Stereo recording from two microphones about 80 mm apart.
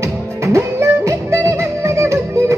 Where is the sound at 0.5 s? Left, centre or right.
Right.